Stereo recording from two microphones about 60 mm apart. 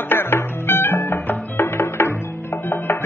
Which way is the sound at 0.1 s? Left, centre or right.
Left.